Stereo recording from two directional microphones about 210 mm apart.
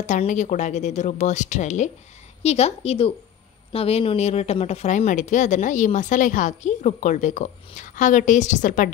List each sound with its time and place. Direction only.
0.0 s a woman's voice: 35° left (ahead or behind)